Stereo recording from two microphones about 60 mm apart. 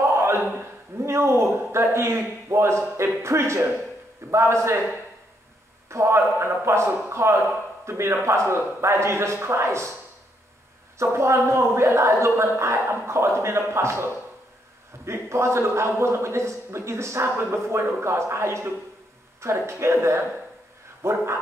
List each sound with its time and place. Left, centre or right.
0.0 s a sound: right
0.6 s a man's voice: right
5.9 s a man's voice: right
11.0 s speech: right